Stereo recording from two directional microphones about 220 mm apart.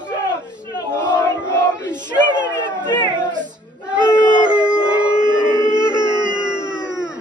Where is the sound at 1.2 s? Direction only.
10° left (ahead or behind).